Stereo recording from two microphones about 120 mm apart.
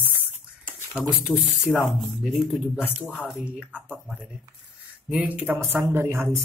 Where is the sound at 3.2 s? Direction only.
10° right (ahead or behind).